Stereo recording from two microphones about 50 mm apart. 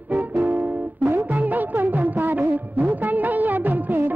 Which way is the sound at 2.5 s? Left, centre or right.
Right.